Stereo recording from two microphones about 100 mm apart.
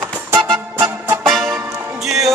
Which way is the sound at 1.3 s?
Centre (ahead or behind).